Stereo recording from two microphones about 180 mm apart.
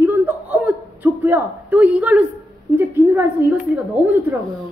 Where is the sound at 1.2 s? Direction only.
10° right (ahead or behind).